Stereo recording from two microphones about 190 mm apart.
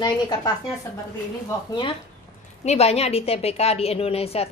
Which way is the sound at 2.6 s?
35° left (ahead or behind).